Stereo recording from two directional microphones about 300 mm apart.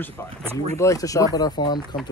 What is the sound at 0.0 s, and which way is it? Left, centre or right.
Speech, centre.